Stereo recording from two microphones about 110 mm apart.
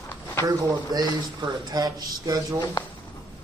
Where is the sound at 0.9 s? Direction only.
35° right (ahead or behind).